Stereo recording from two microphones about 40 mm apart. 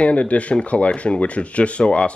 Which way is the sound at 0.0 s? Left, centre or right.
Left.